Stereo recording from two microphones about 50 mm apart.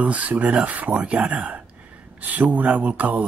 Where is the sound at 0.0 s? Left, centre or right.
Right.